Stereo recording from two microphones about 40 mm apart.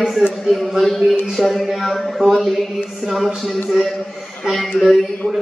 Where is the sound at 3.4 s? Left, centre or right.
Centre.